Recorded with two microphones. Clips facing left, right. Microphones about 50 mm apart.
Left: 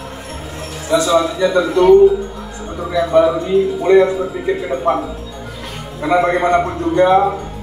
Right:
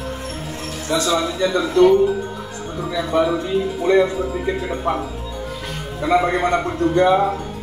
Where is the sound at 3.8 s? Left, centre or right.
Left.